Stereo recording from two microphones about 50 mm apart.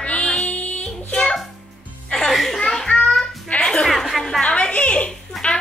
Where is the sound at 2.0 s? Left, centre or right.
Centre.